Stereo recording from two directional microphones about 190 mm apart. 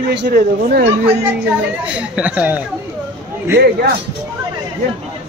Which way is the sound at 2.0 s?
5° right (ahead or behind).